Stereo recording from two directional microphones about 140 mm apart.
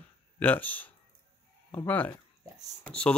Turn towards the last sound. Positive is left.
turn(degrees=5)  # may be behind; listen again after turning